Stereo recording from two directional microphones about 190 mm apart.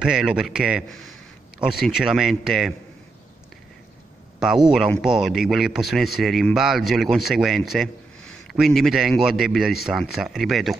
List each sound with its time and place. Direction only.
0.0 s speech: 5° right (ahead or behind)
4.6 s speech: 5° right (ahead or behind)